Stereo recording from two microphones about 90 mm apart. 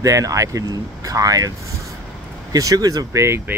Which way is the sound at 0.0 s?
40° right (ahead or behind).